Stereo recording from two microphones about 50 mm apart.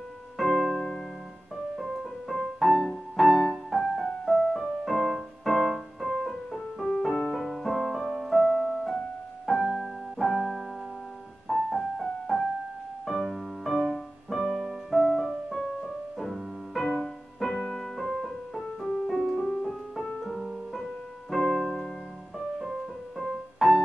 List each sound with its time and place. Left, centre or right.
0.4 s music: centre
1.8 s music: centre
11.7 s music: centre
20.2 s piano: centre
21.3 s music: centre